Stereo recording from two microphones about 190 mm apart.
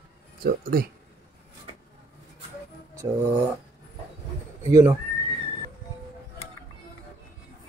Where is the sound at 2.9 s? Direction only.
15° right (ahead or behind).